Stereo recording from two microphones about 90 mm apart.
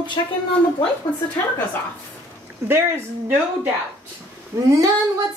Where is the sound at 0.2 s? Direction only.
60° left (ahead or behind).